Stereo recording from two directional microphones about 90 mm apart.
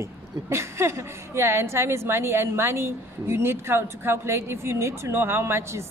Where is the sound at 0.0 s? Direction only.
30° right (ahead or behind).